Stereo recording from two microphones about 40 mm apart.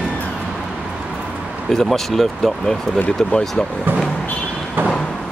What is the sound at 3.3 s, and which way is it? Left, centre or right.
Speech, centre.